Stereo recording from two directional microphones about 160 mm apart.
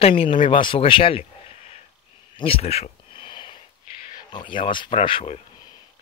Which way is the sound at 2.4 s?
40° left (ahead or behind).